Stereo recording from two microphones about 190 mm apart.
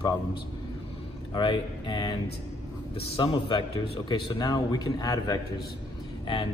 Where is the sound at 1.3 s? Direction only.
25° left (ahead or behind).